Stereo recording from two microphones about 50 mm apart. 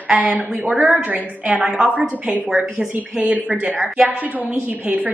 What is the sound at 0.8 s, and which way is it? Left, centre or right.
Speech, right.